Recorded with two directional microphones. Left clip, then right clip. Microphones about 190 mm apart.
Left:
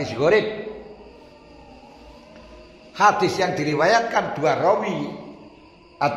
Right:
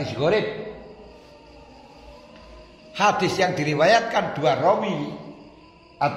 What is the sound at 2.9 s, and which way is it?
A man's voice, 25° right (ahead or behind).